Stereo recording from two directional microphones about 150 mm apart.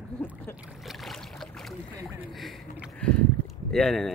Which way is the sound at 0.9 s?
Centre (ahead or behind).